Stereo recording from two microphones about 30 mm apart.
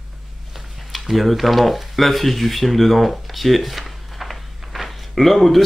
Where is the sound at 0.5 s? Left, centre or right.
Centre.